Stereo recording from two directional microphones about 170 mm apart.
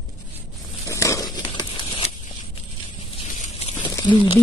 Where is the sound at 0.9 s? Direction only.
15° left (ahead or behind).